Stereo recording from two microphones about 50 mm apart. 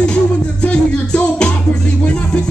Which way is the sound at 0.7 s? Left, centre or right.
Left.